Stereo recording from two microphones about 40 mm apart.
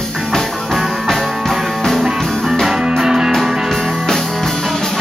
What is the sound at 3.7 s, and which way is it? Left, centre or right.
Music, centre.